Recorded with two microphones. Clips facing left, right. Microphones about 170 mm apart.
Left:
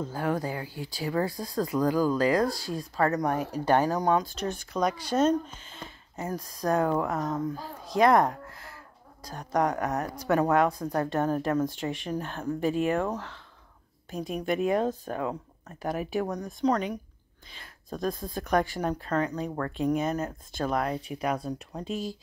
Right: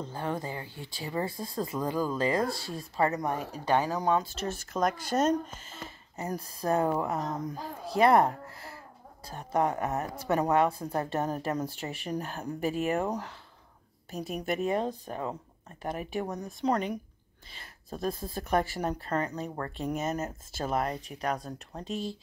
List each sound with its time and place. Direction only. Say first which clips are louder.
0.0 s speech: left 4 dB; 5° left (ahead or behind)
3.5 s speech: left 3 dB; 40° left (ahead or behind)
4.2 s speech: left 2 dB; 5° right (ahead or behind)
7.2 s speech: left 4 dB; 20° right (ahead or behind)
7.9 s speech: left 1 dB; 5° right (ahead or behind)
14.4 s speech: left 4 dB; centre (ahead or behind)